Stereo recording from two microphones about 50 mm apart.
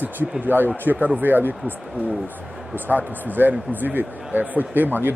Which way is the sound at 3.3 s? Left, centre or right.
Right.